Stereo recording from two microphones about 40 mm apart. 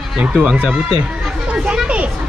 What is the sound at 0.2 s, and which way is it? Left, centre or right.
Speech, right.